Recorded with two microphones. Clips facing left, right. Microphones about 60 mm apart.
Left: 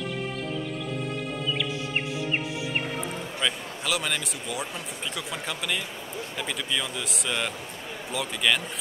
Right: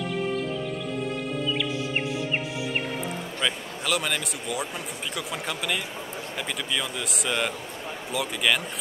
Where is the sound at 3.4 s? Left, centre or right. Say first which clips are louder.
Even; centre.